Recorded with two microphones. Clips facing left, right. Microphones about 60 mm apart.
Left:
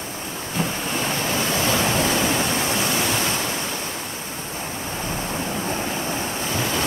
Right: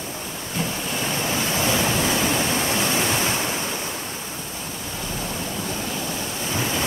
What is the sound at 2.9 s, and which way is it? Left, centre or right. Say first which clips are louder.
Waves: even; centre.